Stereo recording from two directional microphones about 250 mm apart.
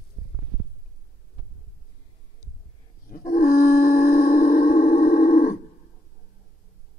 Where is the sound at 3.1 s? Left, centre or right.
Left.